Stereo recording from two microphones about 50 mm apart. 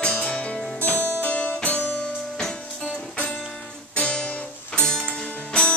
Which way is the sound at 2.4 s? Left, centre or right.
Centre.